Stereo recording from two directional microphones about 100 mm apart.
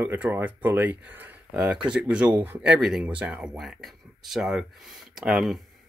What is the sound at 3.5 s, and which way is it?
Speech, centre (ahead or behind).